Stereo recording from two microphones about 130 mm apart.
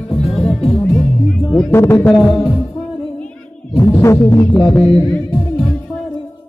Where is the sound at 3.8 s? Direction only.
20° left (ahead or behind).